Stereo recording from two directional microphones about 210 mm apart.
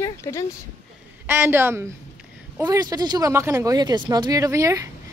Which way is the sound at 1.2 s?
10° right (ahead or behind).